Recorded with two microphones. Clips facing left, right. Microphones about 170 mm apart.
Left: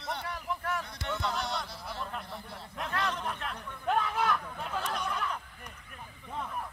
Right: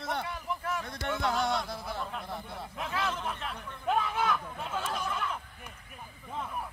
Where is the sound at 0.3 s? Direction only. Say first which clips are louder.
Even; centre (ahead or behind).